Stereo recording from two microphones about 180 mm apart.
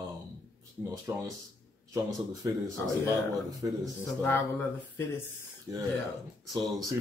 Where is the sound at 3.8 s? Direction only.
10° left (ahead or behind).